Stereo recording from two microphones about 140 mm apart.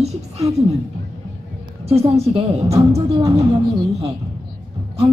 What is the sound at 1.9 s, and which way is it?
Speech, 45° right (ahead or behind).